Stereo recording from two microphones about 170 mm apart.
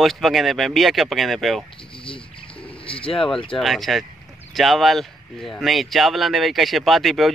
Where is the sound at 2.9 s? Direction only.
30° left (ahead or behind).